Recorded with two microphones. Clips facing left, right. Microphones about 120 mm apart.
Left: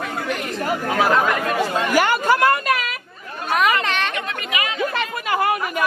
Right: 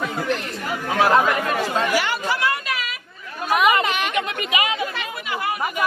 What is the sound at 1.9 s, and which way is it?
Chatter, 50° left (ahead or behind).